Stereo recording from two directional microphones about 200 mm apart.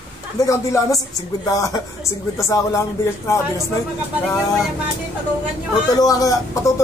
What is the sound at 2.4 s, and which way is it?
Speech, 15° left (ahead or behind).